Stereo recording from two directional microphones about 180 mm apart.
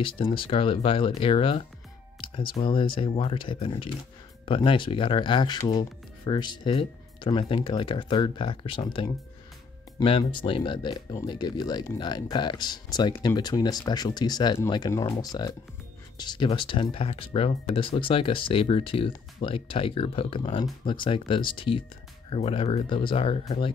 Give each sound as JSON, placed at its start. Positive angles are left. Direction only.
{"t": 0.0, "sound": "speech", "side_deg": 30}